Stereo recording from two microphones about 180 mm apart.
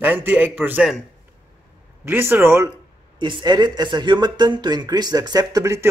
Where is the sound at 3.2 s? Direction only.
25° right (ahead or behind).